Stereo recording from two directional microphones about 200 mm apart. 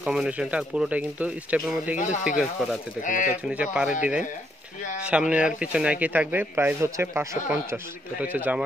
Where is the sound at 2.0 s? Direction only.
40° left (ahead or behind).